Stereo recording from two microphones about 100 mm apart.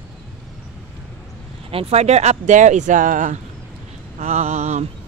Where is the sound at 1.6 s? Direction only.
80° right.